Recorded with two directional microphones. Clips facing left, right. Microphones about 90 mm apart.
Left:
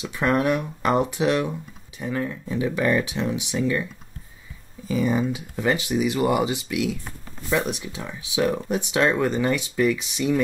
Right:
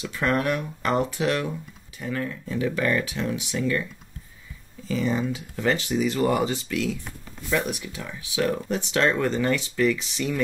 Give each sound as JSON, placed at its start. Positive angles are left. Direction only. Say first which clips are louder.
{"t": 0.0, "sound": "speech", "louder": "left 3 dB", "side_deg": 20}
{"t": 4.8, "sound": "speech", "louder": "left 3 dB", "side_deg": 15}